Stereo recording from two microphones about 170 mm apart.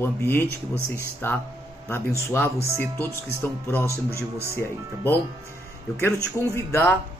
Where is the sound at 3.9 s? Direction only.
15° right (ahead or behind).